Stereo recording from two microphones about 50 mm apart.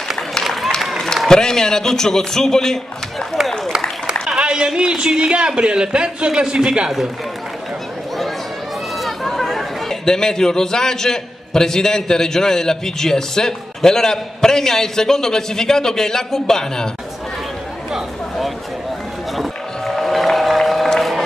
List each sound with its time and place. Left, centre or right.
0.4 s run: centre
0.9 s a man's voice: centre
4.4 s a man's voice: centre
9.0 s a man's voice: centre
19.3 s run: centre